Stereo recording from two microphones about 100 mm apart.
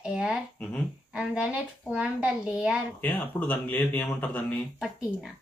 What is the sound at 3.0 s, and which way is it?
Speech, 20° left (ahead or behind).